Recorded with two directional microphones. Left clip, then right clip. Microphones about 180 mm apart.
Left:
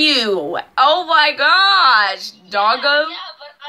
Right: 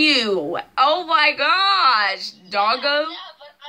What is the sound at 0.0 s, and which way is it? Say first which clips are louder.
A woman's voice: left 2 dB; 10° right (ahead or behind).